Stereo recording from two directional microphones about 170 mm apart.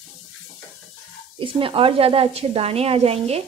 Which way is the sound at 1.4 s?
30° right (ahead or behind).